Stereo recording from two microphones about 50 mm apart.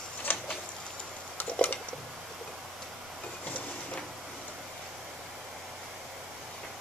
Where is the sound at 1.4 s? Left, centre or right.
Left.